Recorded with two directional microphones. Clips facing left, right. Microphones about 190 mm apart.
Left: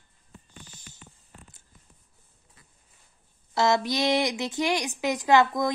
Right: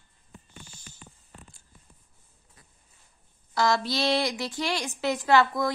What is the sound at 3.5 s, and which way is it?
A woman's voice, 20° left (ahead or behind).